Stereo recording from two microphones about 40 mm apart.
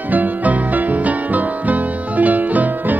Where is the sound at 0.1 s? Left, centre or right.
Right.